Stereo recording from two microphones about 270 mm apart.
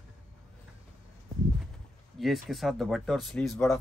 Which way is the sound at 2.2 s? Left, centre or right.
Centre.